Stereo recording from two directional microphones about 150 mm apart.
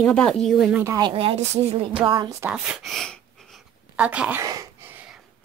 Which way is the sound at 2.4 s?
5° right (ahead or behind).